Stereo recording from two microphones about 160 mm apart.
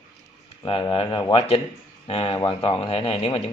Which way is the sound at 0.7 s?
35° left (ahead or behind).